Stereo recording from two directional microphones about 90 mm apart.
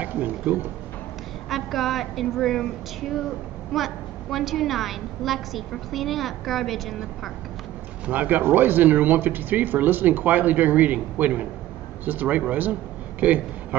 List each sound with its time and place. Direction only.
0.0 s speech: 20° right (ahead or behind)
1.5 s a woman's voice: centre (ahead or behind)
8.1 s a man's voice: 20° right (ahead or behind)